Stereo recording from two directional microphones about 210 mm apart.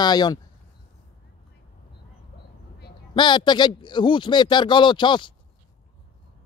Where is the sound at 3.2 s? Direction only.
20° left (ahead or behind).